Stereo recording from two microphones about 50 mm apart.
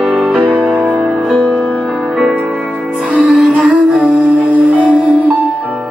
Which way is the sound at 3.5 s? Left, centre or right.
Right.